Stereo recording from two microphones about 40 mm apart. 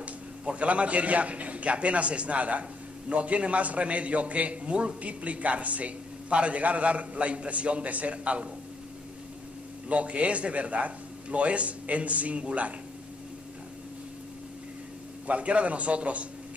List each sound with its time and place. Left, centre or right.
0.0 s a man's voice: right
9.8 s a man's voice: right
15.2 s a man's voice: right